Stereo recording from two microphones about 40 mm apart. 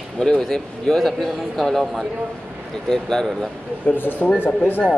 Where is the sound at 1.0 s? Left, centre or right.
Centre; by 4.3 s left.